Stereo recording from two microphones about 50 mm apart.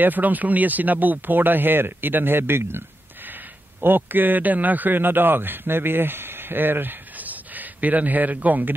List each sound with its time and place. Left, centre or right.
0.0 s speech: right
3.8 s speech: right